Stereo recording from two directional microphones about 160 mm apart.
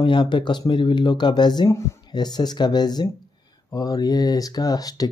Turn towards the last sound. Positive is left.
turn(degrees=25)  # may be behind; listen again after turning